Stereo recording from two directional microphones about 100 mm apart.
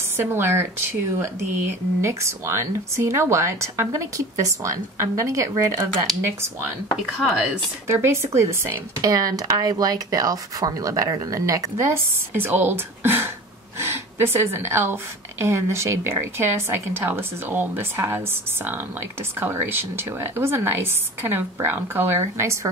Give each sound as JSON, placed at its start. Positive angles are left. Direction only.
{"t": 0.2, "sound": "speech", "side_deg": -25}
{"t": 7.2, "sound": "speech", "side_deg": 0}
{"t": 7.9, "sound": "speech", "side_deg": -25}
{"t": 9.1, "sound": "speech", "side_deg": -40}
{"t": 11.8, "sound": "speech", "side_deg": -25}